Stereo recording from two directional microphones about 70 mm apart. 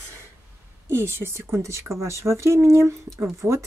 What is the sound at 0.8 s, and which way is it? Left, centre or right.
A woman's voice, right.